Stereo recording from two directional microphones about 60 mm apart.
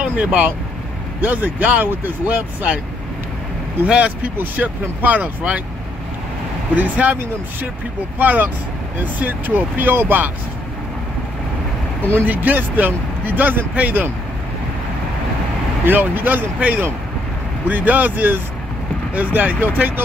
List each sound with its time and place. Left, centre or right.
0.0 s speech: right
3.8 s speech: right
6.8 s speech: right
8.2 s speech: right
12.3 s speech: right
15.8 s speech: right